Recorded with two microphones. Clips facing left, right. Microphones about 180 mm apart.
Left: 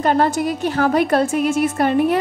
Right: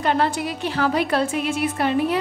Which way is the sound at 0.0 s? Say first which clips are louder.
Left 4 dB; 45° left (ahead or behind).